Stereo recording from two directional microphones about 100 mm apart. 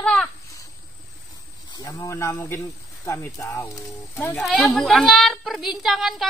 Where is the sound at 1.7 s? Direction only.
35° left (ahead or behind); by 3.3 s 20° left (ahead or behind).